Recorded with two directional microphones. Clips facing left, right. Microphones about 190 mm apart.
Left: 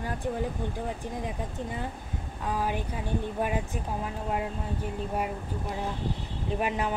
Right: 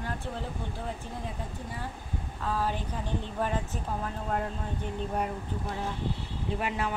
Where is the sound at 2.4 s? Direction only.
15° left (ahead or behind).